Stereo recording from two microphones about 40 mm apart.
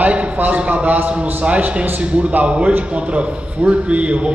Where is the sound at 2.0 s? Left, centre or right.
Right.